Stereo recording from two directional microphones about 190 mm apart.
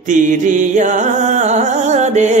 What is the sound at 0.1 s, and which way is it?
Music, 40° right (ahead or behind).